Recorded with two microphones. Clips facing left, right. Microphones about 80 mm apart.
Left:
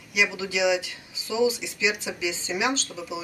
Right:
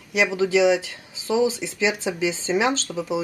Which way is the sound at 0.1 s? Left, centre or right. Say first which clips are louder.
Right 7 dB; right.